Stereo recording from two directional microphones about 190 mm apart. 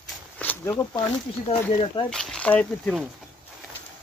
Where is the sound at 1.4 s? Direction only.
30° left (ahead or behind).